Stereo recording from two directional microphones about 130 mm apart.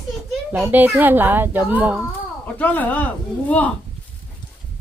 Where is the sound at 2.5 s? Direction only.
15° left (ahead or behind).